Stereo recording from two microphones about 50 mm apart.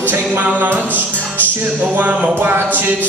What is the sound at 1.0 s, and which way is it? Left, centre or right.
Music, right.